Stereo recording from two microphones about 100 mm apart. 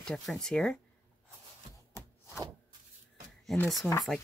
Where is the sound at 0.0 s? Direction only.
5° left (ahead or behind).